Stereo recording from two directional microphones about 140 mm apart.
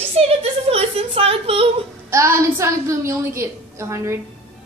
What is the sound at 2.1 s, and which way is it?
A woman's voice, 20° right (ahead or behind).